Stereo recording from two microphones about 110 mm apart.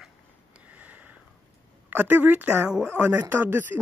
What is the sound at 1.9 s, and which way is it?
Speech, 15° right (ahead or behind).